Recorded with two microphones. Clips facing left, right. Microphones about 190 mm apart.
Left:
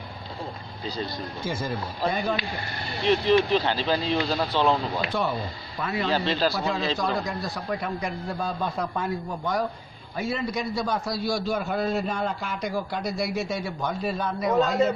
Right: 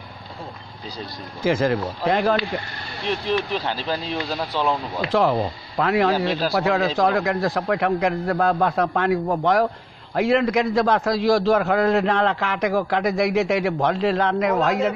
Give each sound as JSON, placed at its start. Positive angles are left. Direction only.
{"t": 1.4, "sound": "a man's voice", "side_deg": -90}
{"t": 3.1, "sound": "speech", "side_deg": 0}
{"t": 5.1, "sound": "a man's voice", "side_deg": -90}
{"t": 6.1, "sound": "speech", "side_deg": -5}
{"t": 6.5, "sound": "a man's voice", "side_deg": -80}